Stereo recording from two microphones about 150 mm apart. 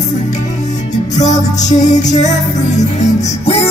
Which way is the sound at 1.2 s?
50° left (ahead or behind).